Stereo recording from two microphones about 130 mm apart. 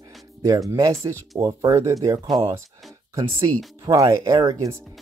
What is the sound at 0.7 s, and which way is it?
Speech, 25° right (ahead or behind).